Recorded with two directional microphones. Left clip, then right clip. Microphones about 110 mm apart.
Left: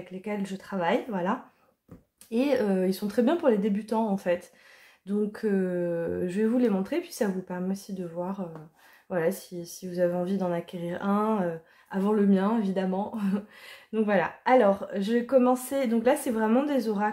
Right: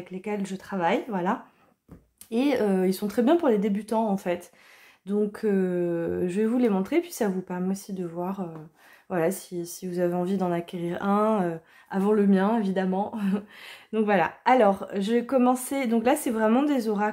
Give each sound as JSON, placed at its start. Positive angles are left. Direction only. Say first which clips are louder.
{"t": 0.1, "sound": "speech", "louder": "right 2 dB", "side_deg": -40}